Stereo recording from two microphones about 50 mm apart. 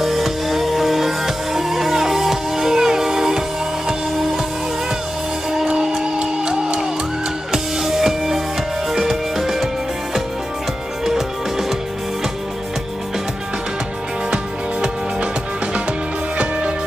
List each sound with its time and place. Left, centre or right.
0.0 s music: centre
6.1 s music: centre
11.1 s music: centre
14.3 s music: centre
16.3 s music: centre